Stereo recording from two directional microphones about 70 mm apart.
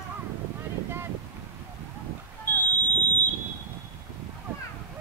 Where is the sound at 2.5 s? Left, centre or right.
Left.